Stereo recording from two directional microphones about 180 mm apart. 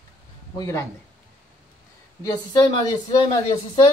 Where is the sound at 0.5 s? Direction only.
15° left (ahead or behind).